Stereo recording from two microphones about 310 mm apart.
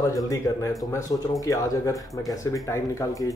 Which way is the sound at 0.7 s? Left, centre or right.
Centre.